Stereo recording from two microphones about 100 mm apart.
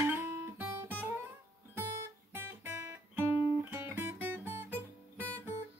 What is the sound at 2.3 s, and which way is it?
Guitar, 25° right (ahead or behind).